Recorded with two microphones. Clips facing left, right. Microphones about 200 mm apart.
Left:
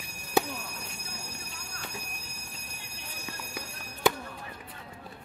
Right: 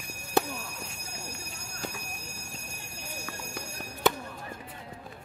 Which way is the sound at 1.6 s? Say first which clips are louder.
Right 5 dB; 45° right (ahead or behind).